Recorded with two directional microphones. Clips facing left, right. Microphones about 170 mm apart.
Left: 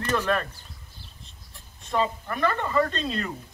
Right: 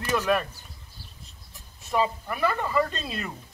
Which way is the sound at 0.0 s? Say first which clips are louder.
Right 1 dB; 10° right (ahead or behind).